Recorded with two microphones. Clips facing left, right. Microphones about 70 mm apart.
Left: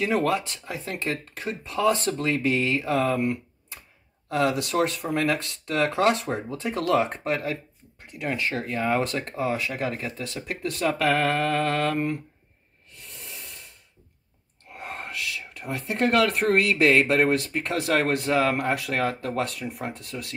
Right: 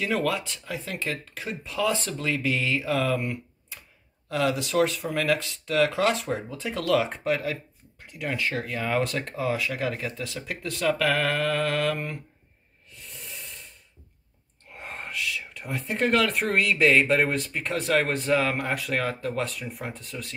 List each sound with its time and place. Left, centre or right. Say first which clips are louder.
0.2 s speech: left 3 dB; left
4.3 s speech: left 2 dB; left
8.4 s mantra: left 1 dB; left
9.4 s mantra: left 1 dB; left
9.7 s mantra: even; left
10.2 s mantra: left 2 dB; left
12.9 s snake: even; left
15.7 s speech: left 1 dB; left